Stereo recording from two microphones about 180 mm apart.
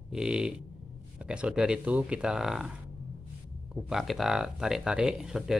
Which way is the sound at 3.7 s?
Centre (ahead or behind).